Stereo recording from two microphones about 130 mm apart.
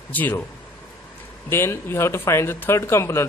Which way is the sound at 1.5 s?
20° left (ahead or behind).